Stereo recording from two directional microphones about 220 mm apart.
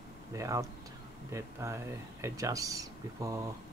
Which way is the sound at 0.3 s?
15° right (ahead or behind).